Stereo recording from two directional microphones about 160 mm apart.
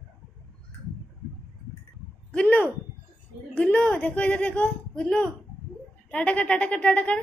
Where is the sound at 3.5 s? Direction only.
5° left (ahead or behind).